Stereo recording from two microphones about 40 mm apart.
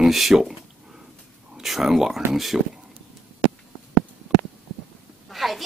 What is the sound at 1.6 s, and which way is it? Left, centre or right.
Speech, centre.